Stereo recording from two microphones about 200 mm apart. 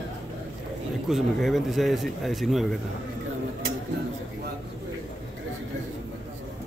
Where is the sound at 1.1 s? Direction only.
Centre (ahead or behind).